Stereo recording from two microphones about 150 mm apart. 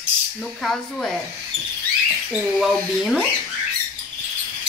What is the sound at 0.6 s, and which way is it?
Speech, centre (ahead or behind).